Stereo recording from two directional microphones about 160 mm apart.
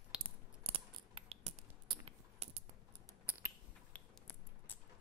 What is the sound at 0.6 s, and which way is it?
Scissors, 35° right (ahead or behind).